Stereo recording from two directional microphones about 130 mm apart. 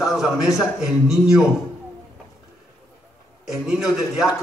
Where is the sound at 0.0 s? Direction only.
5° right (ahead or behind).